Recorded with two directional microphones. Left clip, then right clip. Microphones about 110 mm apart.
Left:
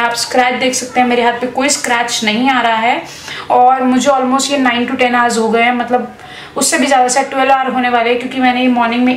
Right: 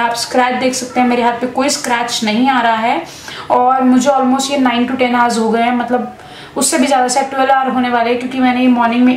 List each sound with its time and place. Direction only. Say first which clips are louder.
0.0 s a woman's voice: left 1 dB; 10° left (ahead or behind)